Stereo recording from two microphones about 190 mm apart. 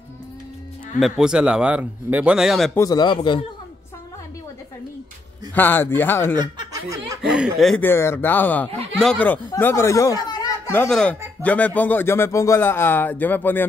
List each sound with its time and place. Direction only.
0.9 s speech: centre (ahead or behind)
2.7 s speech: 20° left (ahead or behind)
5.5 s speech: 10° left (ahead or behind)
6.3 s speech: 20° right (ahead or behind)
7.2 s speech: 5° right (ahead or behind)